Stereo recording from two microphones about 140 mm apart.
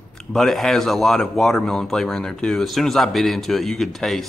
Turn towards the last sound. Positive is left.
turn(degrees=0)  # may be behind; listen again after turning